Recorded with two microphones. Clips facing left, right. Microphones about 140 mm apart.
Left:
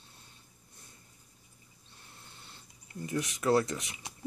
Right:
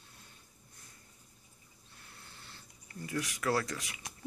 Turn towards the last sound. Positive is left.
turn(degrees=20)  # may be behind; listen again after turning